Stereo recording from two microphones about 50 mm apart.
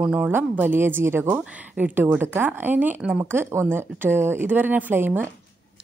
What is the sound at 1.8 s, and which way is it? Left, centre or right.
A woman's voice, right.